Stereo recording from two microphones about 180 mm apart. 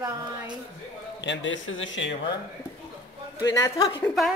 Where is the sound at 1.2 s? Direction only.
85° left.